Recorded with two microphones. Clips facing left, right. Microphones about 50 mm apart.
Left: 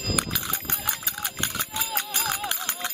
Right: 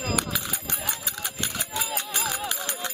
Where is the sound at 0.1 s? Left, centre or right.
Centre.